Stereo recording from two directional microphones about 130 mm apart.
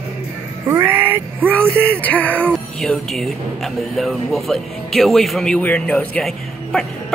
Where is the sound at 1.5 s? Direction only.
10° left (ahead or behind).